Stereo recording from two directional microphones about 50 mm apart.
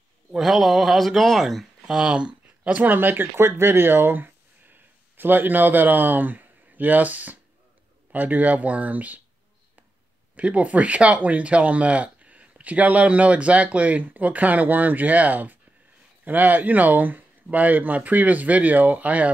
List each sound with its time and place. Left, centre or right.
0.4 s speech: centre
2.1 s a sound: right
2.7 s speech: right
3.4 s a man's voice: right
10.3 s speech: right